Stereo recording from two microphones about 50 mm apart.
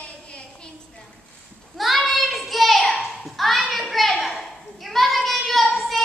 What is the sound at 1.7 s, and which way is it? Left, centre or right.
Child singing, centre.